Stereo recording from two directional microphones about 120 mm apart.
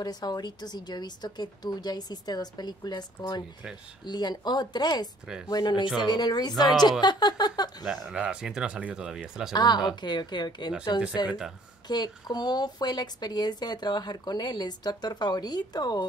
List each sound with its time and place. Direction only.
0.0 s speech: 35° left (ahead or behind)
7.8 s speech: 5° right (ahead or behind)
9.5 s speech: 35° left (ahead or behind)
11.2 s speech: 5° right (ahead or behind)
11.9 s speech: 35° left (ahead or behind)